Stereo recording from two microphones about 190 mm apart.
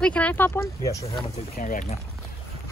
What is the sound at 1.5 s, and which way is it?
Speech, 40° left (ahead or behind).